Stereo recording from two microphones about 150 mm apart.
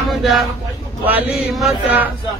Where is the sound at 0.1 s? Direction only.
Centre (ahead or behind).